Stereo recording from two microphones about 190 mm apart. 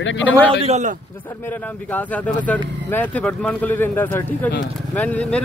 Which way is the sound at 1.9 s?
10° left (ahead or behind).